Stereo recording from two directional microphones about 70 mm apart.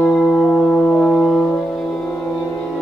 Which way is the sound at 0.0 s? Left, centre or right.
Centre.